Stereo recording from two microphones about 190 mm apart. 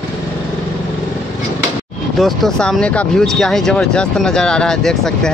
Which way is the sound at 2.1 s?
Centre (ahead or behind).